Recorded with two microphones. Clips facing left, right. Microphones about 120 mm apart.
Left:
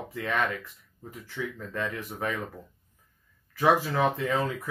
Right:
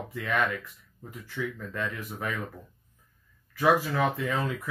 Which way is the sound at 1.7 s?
30° left (ahead or behind).